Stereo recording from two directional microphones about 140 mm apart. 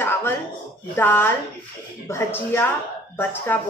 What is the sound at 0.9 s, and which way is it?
A woman's voice, 15° left (ahead or behind).